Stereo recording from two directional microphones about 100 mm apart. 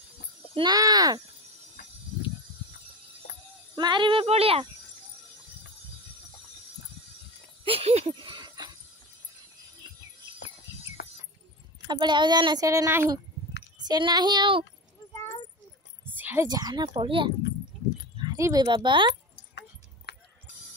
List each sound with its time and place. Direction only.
0.6 s speech: 40° right (ahead or behind)
3.7 s speech: 50° right (ahead or behind); by 4.6 s 75° right (ahead or behind)
7.6 s a sound: 75° right (ahead or behind)
8.5 s jingle bell: 45° right (ahead or behind)
11.9 s speech: 50° right (ahead or behind)
12.6 s speech: 30° right (ahead or behind)
13.8 s speech: 45° right (ahead or behind)
16.2 s a sound: 20° right (ahead or behind)
16.4 s speech: 40° right (ahead or behind); by 17.3 s 60° right (ahead or behind)
18.3 s speech: 35° right (ahead or behind)